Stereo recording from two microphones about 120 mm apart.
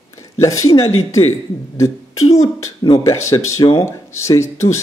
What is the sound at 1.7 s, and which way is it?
Speech, 25° left (ahead or behind).